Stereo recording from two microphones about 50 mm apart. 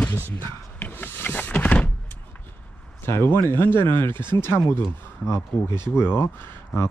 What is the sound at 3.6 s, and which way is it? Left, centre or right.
Speech, left.